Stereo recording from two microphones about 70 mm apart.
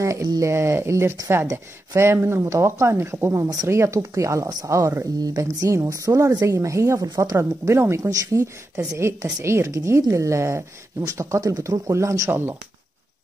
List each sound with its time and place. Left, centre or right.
0.0 s a sound: right
0.4 s speech: right
8.1 s speech: right
8.7 s speech: right
11.9 s speech: right
12.3 s speech: right